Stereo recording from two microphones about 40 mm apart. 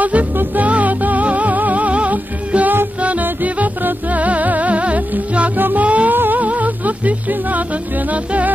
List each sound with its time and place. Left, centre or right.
0.0 s music: right
6.1 s music: right
6.4 s music: right